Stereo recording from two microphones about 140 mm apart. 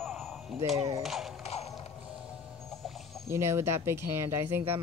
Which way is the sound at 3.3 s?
20° right (ahead or behind).